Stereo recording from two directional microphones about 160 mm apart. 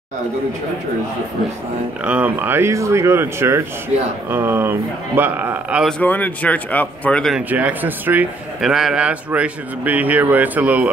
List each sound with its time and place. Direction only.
2.0 s a man's voice: 10° right (ahead or behind)
5.9 s speech: 10° left (ahead or behind)
7.3 s a man's voice: 10° right (ahead or behind)